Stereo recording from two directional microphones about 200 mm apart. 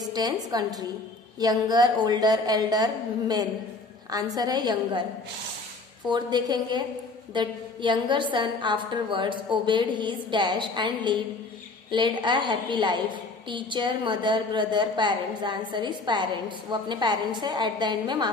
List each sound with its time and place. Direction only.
0.0 s a woman's voice: 20° right (ahead or behind)
6.0 s a woman's voice: 20° right (ahead or behind)